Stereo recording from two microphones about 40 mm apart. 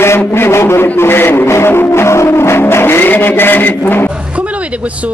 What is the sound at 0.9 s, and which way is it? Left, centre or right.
Music, left.